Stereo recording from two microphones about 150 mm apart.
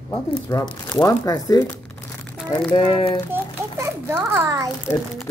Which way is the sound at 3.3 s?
15° right (ahead or behind).